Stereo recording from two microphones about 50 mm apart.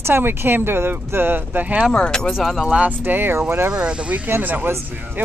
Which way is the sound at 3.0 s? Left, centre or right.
Right.